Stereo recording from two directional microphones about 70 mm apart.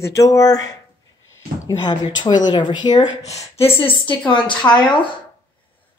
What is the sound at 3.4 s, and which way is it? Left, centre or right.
Speech, left.